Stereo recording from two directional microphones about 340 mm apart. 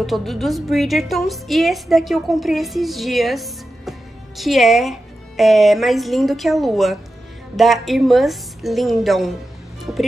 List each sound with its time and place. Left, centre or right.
0.0 s a woman's voice: centre